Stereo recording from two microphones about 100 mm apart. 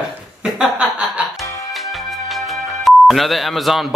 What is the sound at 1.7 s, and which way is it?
Speech, centre (ahead or behind).